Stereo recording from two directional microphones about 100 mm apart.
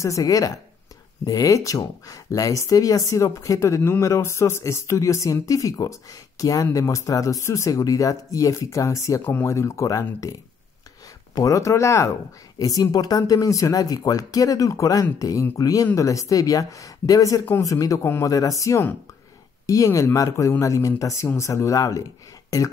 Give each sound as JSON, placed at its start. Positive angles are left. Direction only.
{"t": 0.0, "sound": "speech", "side_deg": 35}
{"t": 11.3, "sound": "speech", "side_deg": 35}